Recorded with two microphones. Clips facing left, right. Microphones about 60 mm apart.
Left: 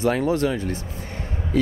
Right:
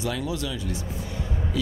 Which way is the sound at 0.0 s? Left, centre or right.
Left.